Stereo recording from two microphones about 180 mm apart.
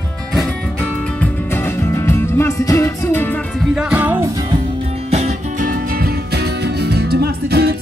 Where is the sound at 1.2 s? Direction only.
15° left (ahead or behind).